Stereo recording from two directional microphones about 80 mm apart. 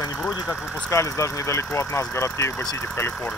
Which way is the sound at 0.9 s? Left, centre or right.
Left.